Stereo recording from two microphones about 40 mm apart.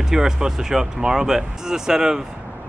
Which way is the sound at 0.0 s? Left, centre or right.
Centre.